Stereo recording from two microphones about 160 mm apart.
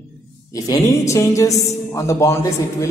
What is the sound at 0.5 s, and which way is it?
A woman's voice, 20° left (ahead or behind).